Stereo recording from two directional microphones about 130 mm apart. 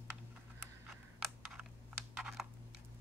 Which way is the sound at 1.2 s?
Centre (ahead or behind).